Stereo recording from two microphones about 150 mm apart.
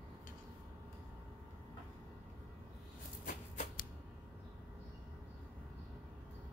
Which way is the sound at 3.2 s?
70° left (ahead or behind).